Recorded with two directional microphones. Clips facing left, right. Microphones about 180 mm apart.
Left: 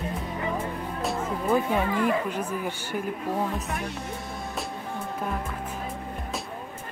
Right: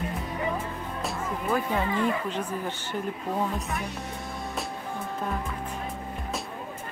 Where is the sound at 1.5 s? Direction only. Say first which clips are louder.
Left 3 dB; 15° left (ahead or behind); by 3.9 s centre (ahead or behind).